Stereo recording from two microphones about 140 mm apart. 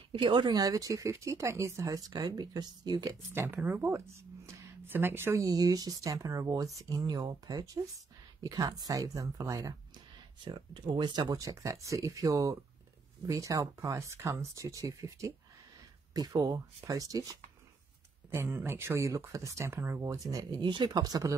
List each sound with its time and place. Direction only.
0.1 s speech: 35° right (ahead or behind)
18.3 s speech: 15° right (ahead or behind)